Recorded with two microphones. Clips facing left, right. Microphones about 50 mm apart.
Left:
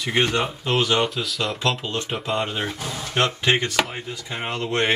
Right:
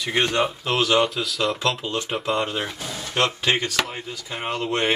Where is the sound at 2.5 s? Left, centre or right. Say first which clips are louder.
Left 1 dB; centre.